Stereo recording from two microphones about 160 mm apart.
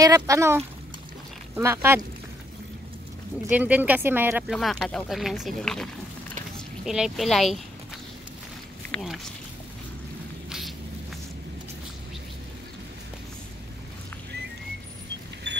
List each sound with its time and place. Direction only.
0.0 s speech: 20° right (ahead or behind)
3.4 s speech: 10° right (ahead or behind)
4.5 s speech: centre (ahead or behind)
8.9 s speech: centre (ahead or behind)
15.5 s vehicle: 90° right